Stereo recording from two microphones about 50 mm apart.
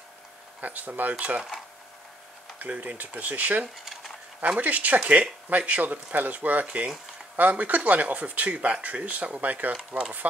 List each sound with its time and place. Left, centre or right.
0.6 s speech: right
1.1 s speech: right
2.6 s speech: right